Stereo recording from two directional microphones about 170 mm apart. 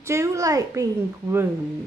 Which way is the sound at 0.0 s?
15° right (ahead or behind).